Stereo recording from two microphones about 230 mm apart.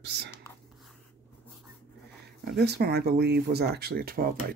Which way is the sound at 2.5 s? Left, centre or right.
Right.